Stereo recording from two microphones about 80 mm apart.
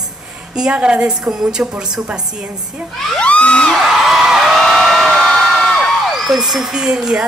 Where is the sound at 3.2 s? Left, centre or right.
Centre.